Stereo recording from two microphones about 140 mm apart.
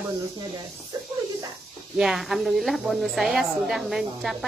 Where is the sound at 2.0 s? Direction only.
Centre (ahead or behind).